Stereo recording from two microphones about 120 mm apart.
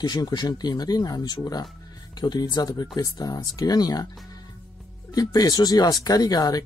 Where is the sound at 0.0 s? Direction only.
35° left (ahead or behind).